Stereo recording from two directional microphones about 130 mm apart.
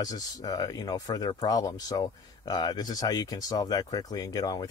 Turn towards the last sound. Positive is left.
turn(degrees=30)  # may be behind; listen again after turning